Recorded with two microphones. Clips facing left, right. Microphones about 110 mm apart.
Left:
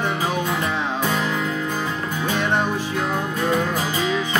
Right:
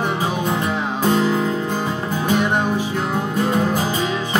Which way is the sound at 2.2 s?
15° right (ahead or behind).